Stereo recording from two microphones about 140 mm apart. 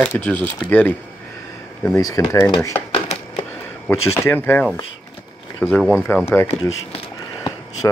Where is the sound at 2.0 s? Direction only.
25° left (ahead or behind).